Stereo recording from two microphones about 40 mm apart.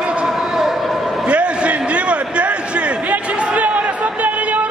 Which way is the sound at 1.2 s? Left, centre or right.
Right.